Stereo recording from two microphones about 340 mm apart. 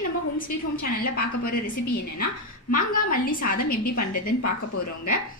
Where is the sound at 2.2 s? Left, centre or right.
Left.